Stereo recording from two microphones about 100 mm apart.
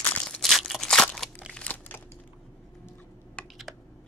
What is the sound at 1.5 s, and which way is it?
Crumpling, 15° left (ahead or behind).